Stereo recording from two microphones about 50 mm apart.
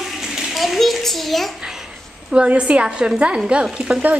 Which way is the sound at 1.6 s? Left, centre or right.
Centre.